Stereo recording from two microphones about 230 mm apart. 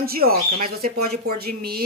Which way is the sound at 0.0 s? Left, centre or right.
Right.